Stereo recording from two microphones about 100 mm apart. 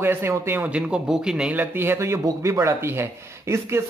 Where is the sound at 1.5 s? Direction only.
20° right (ahead or behind).